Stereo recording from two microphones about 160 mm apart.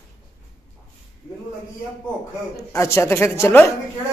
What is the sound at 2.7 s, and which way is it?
A woman's voice, 15° left (ahead or behind).